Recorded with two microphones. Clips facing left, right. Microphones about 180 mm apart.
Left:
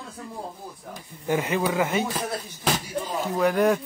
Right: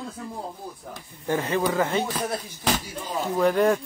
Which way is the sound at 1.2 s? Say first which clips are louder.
Even; 15° left (ahead or behind).